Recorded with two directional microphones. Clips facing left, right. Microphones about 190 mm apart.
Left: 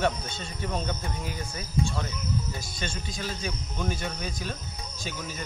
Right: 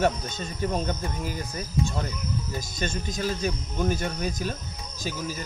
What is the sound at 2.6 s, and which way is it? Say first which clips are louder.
Speech: right 5 dB; 45° right (ahead or behind).